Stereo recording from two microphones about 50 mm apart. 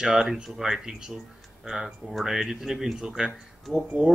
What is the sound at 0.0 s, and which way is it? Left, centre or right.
Speech, centre.